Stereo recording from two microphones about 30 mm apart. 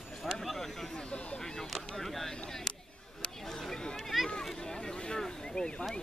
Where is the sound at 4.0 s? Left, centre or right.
Centre.